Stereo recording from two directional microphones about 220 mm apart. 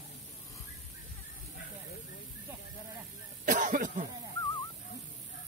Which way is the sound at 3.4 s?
35° right (ahead or behind).